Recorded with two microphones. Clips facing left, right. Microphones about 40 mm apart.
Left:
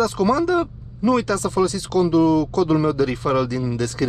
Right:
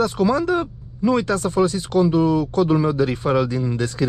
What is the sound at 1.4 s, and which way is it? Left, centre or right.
Speech, right.